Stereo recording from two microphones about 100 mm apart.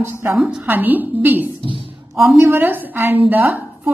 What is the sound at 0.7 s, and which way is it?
A woman's voice, 20° right (ahead or behind).